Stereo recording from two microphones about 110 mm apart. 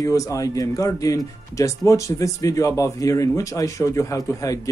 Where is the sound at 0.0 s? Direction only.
30° left (ahead or behind).